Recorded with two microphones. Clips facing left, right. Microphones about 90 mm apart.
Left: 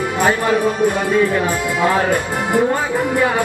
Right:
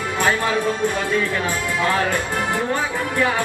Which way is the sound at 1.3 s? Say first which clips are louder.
Left 5 dB; 15° left (ahead or behind).